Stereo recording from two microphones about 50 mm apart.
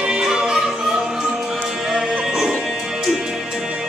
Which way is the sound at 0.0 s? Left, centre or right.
Centre.